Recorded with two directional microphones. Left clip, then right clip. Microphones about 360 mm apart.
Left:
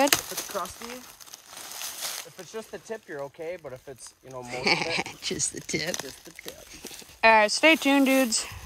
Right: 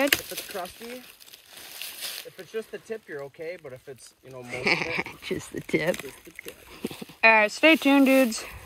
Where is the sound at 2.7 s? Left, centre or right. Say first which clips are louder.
Right 1 dB; centre.